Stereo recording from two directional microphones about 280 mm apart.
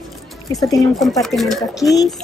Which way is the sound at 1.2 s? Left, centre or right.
Centre.